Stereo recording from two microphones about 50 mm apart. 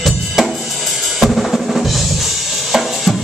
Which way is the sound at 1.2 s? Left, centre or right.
Centre.